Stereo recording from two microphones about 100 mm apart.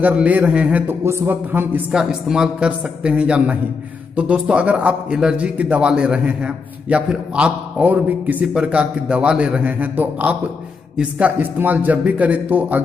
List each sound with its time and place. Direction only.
0.0 s a man's voice: 15° right (ahead or behind)
1.0 s a man's voice: 25° right (ahead or behind)
1.9 s a man's voice: 5° right (ahead or behind)